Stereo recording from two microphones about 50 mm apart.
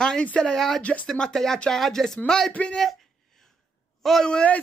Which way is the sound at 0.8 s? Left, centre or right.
Left.